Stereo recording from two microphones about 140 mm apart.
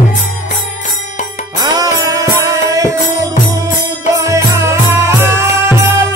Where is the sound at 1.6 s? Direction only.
25° right (ahead or behind).